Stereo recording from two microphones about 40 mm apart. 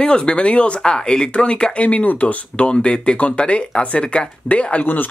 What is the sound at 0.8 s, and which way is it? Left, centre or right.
Speech, centre.